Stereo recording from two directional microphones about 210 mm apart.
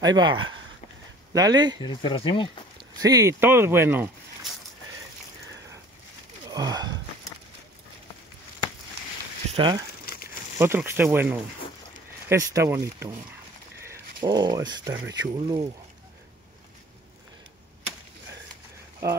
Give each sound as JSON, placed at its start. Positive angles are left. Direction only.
{"t": 0.0, "sound": "speech", "side_deg": -20}
{"t": 1.8, "sound": "speech", "side_deg": 20}
{"t": 3.0, "sound": "speech", "side_deg": -15}
{"t": 6.5, "sound": "speech", "side_deg": -20}
{"t": 9.6, "sound": "speech", "side_deg": -20}
{"t": 10.6, "sound": "speech", "side_deg": -10}